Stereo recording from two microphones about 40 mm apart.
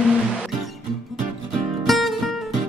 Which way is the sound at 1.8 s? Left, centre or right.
Centre.